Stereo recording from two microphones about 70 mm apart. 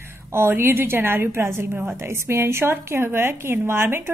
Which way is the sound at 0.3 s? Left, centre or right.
Right.